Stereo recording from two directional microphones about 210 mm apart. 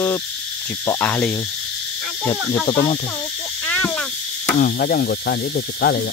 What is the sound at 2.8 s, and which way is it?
Cricket, 35° left (ahead or behind).